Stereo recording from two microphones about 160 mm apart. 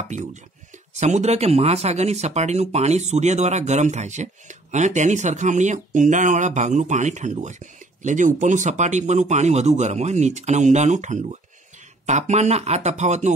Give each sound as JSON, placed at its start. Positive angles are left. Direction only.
{"t": 0.1, "sound": "speech", "side_deg": -50}